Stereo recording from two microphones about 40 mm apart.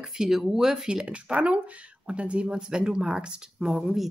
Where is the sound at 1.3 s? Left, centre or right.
Right.